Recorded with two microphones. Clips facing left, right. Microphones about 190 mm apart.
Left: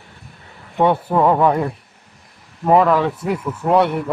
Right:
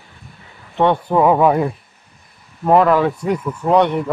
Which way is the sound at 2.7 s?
Centre (ahead or behind).